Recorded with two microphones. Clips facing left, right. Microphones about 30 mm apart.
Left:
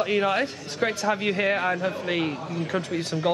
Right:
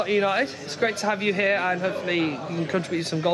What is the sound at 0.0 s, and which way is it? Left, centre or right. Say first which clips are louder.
A man's voice: right 1 dB; centre.